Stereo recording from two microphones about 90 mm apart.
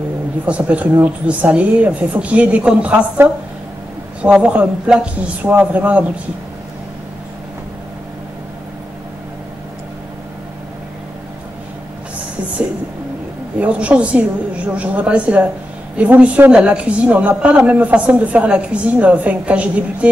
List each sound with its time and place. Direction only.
0.5 s a woman's voice: 15° right (ahead or behind)
13.6 s a woman's voice: 15° right (ahead or behind)